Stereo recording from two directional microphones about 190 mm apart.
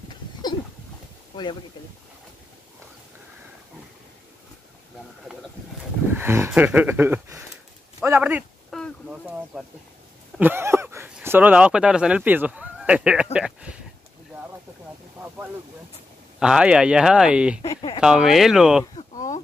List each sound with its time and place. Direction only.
1.3 s speech: 25° left (ahead or behind)
6.1 s speech: 10° right (ahead or behind)
15.1 s wind noise: 10° right (ahead or behind)
16.3 s speech: 5° right (ahead or behind)
17.6 s speech: 25° left (ahead or behind)
18.0 s speech: 5° right (ahead or behind)
18.9 s a sound: 40° left (ahead or behind)